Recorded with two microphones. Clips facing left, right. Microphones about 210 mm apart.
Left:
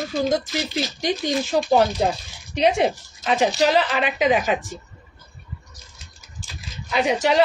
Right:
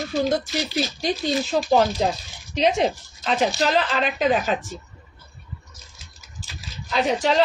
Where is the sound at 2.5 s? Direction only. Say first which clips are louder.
Left 1 dB; 10° left (ahead or behind).